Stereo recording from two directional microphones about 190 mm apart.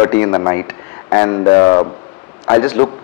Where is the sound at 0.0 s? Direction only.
15° left (ahead or behind).